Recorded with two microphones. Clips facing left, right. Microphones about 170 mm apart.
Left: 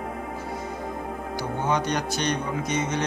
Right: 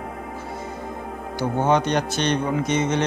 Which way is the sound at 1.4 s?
25° right (ahead or behind).